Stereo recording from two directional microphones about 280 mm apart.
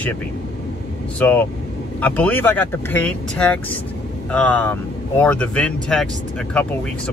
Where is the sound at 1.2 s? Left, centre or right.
Centre.